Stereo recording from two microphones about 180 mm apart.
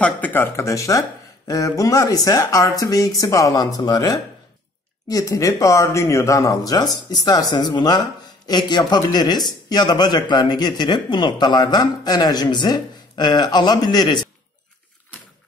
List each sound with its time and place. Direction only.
0.0 s speech: 10° left (ahead or behind)